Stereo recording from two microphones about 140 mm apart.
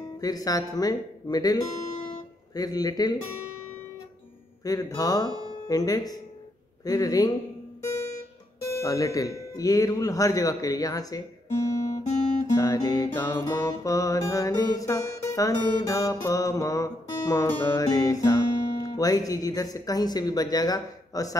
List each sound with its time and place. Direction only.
0.2 s music: 25° left (ahead or behind)
2.0 s guitar: 25° left (ahead or behind)
4.6 s music: 25° left (ahead or behind)
8.7 s music: 25° left (ahead or behind)